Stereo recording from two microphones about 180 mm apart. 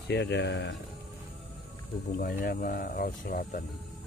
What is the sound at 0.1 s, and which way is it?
Speech, 75° left (ahead or behind).